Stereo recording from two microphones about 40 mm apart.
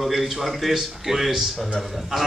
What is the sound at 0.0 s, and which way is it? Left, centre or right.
A man's voice, centre.